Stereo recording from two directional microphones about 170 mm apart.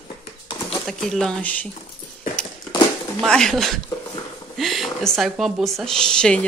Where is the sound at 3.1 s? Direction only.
5° left (ahead or behind).